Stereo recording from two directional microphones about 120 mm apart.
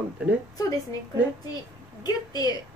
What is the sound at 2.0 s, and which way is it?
Speech, 30° left (ahead or behind).